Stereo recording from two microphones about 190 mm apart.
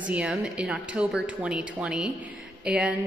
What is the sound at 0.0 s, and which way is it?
Speech, 5° right (ahead or behind).